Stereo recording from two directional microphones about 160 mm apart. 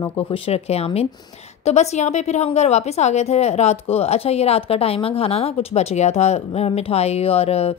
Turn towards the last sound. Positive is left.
turn(degrees=40)  # may be behind; listen again after turning